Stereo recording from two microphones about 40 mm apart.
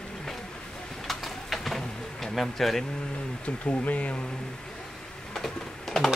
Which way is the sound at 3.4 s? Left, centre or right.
Left.